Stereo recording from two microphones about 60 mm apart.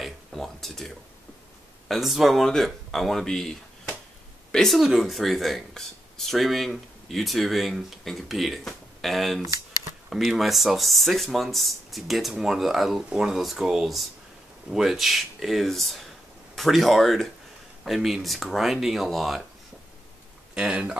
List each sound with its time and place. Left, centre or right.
0.0 s a sound: centre
1.9 s speech: centre
20.5 s speech: centre